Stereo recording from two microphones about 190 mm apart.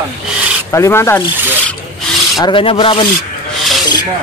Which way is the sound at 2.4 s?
25° left (ahead or behind).